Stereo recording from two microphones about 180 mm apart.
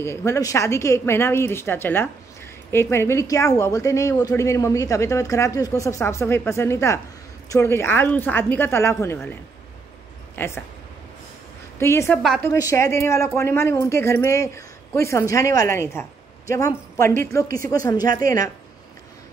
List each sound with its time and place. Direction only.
0.0 s speech: 15° left (ahead or behind)
10.3 s speech: 15° left (ahead or behind)
11.8 s speech: 15° left (ahead or behind)